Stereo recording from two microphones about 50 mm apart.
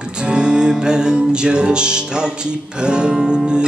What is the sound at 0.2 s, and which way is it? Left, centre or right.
Music, centre.